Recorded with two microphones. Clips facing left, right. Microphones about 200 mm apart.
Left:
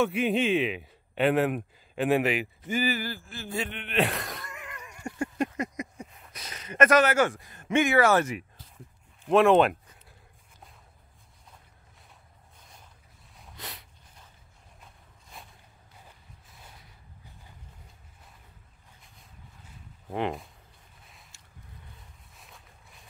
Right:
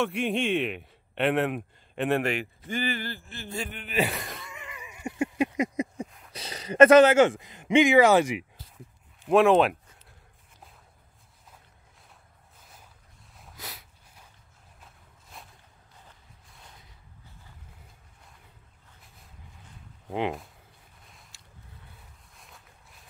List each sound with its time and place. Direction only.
0.0 s a man's voice: centre (ahead or behind)
6.3 s speech: 30° right (ahead or behind); by 8.5 s 15° right (ahead or behind)
9.2 s a man's voice: centre (ahead or behind)
12.5 s a sound: 5° right (ahead or behind)
13.4 s snort: centre (ahead or behind)
15.3 s a sound: centre (ahead or behind)
22.3 s boat: centre (ahead or behind)